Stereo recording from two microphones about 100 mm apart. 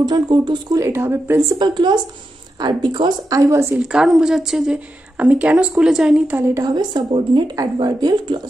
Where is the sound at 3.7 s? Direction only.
5° right (ahead or behind).